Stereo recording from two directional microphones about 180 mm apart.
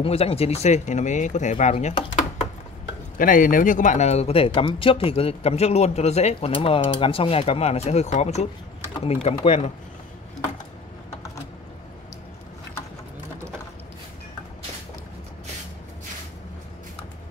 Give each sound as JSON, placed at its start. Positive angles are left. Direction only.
{"t": 0.0, "sound": "speech", "side_deg": 30}